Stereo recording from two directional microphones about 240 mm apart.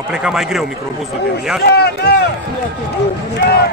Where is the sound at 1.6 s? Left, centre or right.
Left.